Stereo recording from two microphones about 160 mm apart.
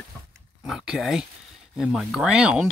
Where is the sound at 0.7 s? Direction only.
5° right (ahead or behind).